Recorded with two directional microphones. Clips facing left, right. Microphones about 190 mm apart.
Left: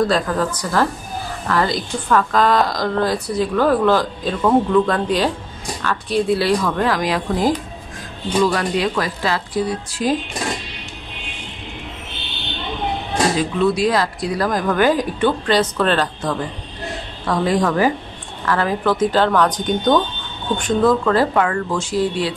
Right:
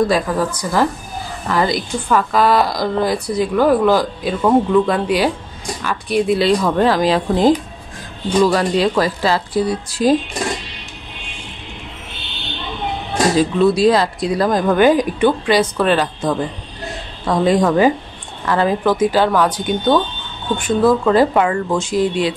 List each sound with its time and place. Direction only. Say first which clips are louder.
0.0 s a woman's voice: right 2 dB; 10° right (ahead or behind); by 10.1 s 35° right (ahead or behind)
13.4 s speech: right 7 dB; 30° right (ahead or behind)
18.9 s a woman's voice: right 1 dB; 10° right (ahead or behind)